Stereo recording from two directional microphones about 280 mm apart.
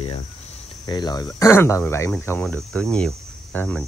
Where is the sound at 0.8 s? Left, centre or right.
Centre.